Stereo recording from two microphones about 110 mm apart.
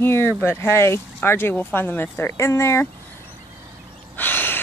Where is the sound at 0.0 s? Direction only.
25° left (ahead or behind).